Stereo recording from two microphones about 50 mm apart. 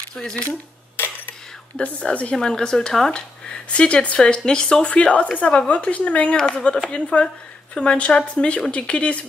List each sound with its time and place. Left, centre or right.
0.1 s speech: centre
0.5 s a sound: left
1.8 s speech: left
2.3 s speech: centre
4.8 s speech: left